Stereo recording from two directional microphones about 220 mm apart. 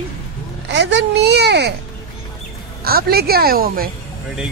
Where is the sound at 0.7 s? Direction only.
55° right (ahead or behind).